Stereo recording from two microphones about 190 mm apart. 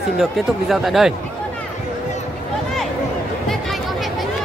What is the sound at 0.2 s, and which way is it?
Speech, centre (ahead or behind).